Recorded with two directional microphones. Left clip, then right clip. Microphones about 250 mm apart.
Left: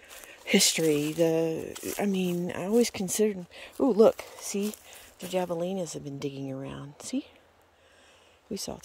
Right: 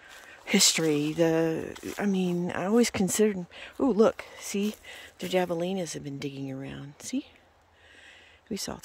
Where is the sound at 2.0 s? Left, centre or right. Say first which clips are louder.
Even; centre.